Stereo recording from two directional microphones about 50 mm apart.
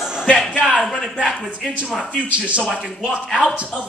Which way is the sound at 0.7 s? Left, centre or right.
Centre.